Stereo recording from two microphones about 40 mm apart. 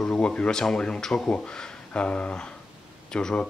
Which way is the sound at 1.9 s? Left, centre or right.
Left.